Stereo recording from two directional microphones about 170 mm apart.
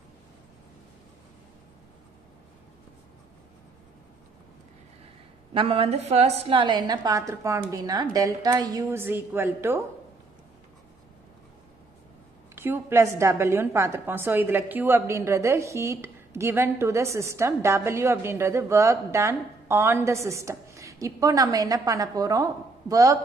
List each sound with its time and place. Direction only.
5.5 s a woman's voice: 30° right (ahead or behind); by 9.8 s 15° right (ahead or behind)
12.5 s a woman's voice: 15° right (ahead or behind)